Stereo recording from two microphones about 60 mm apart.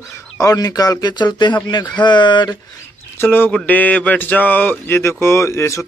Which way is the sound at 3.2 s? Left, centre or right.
Left.